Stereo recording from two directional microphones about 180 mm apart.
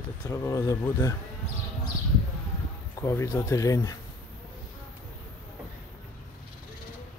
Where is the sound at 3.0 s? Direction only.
15° left (ahead or behind).